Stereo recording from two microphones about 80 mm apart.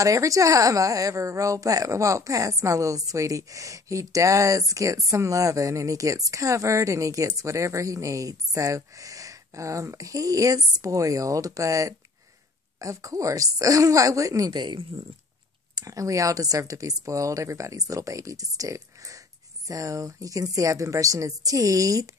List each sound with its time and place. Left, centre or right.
0.0 s speech: right
15.7 s speech: right